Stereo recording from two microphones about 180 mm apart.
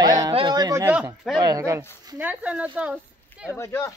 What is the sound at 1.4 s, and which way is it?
Speech, 20° right (ahead or behind).